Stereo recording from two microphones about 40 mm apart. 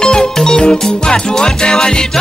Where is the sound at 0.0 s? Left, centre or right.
Centre.